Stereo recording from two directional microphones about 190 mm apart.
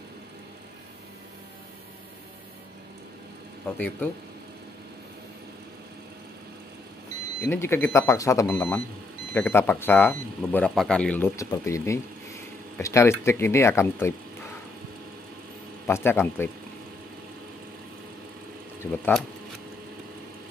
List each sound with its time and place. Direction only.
3.7 s speech: 10° left (ahead or behind)
7.4 s speech: 10° left (ahead or behind)
15.9 s speech: 10° left (ahead or behind)
18.9 s speech: 5° left (ahead or behind)